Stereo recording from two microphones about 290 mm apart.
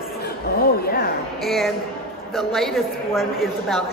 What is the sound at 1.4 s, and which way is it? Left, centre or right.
A woman's voice, centre.